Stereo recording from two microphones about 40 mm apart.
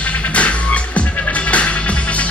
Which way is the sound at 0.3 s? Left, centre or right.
Left.